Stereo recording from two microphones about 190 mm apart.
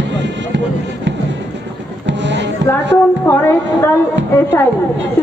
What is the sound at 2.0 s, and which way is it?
Music, 70° right (ahead or behind).